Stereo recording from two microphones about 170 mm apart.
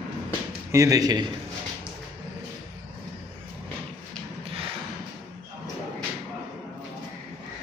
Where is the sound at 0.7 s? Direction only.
20° right (ahead or behind).